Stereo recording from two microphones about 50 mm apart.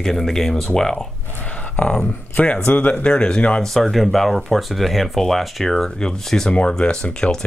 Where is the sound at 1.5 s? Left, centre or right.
Left.